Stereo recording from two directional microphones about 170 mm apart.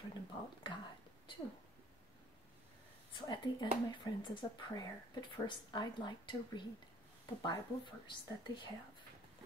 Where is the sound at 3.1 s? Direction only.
25° left (ahead or behind).